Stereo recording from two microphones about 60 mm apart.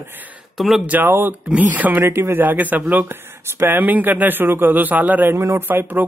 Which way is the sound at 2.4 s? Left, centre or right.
Right.